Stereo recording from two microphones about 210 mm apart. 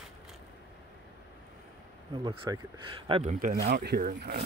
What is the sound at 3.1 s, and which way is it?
Speech, 35° right (ahead or behind).